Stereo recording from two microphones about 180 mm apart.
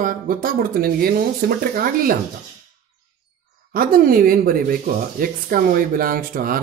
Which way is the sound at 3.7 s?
55° right (ahead or behind).